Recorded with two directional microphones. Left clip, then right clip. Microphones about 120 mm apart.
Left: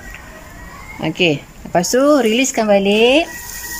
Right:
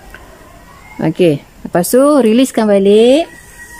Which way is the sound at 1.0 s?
40° right (ahead or behind).